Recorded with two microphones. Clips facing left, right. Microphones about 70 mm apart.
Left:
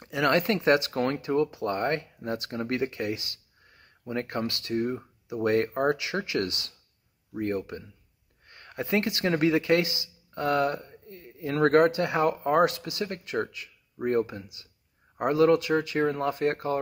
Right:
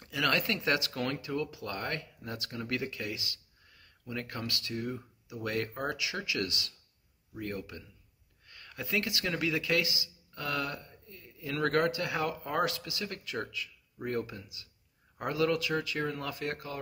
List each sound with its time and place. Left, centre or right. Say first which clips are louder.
0.0 s speech: left 6 dB; left